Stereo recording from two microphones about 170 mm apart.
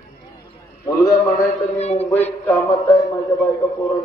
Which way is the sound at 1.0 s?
20° left (ahead or behind).